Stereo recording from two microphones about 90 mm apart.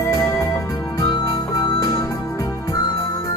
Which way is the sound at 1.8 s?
35° left (ahead or behind).